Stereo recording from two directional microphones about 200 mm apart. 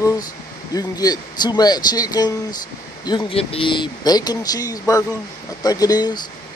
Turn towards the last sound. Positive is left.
turn(degrees=20)  # may be behind; listen again after turning